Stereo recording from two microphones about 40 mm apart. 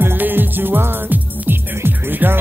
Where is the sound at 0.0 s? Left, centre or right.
Right.